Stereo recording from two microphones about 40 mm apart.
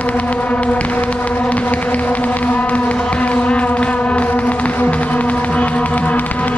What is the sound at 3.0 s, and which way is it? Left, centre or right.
Music, left.